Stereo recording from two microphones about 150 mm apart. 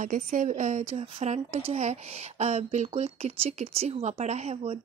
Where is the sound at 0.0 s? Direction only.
60° right (ahead or behind).